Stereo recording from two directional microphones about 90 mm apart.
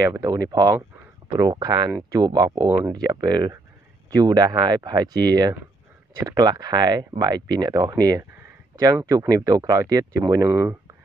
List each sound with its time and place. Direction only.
0.0 s speech: 40° right (ahead or behind)
1.5 s speech: 55° right (ahead or behind)
1.9 s speech: 35° right (ahead or behind)
10.5 s speech: 25° right (ahead or behind)